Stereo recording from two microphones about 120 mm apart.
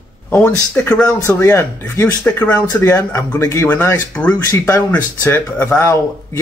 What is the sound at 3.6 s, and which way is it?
Speech, 15° left (ahead or behind).